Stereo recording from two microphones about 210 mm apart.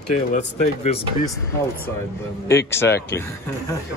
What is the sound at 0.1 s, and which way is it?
Speech, 35° left (ahead or behind).